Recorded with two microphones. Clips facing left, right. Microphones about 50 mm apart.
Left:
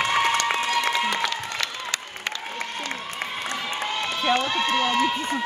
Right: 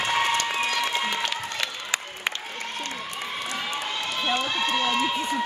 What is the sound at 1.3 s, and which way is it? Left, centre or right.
Applause, centre.